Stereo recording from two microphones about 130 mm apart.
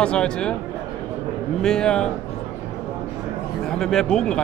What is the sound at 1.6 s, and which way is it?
Speech, 5° left (ahead or behind).